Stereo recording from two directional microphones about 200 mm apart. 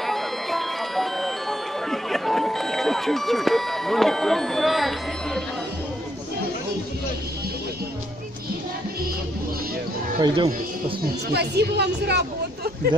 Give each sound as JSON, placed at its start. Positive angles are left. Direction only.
{"t": 0.0, "sound": "music", "side_deg": 0}
{"t": 10.2, "sound": "speech", "side_deg": -25}
{"t": 11.3, "sound": "speech", "side_deg": -55}